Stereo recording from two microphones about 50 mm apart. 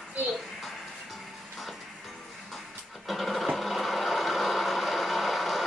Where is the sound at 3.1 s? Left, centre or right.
Centre.